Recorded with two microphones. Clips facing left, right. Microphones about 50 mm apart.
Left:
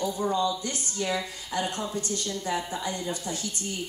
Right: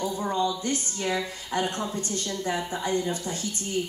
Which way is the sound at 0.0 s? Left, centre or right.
Right.